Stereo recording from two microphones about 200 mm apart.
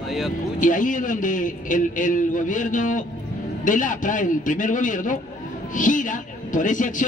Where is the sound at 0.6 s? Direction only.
40° left (ahead or behind).